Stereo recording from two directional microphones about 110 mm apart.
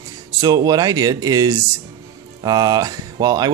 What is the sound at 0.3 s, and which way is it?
Speech, 35° right (ahead or behind).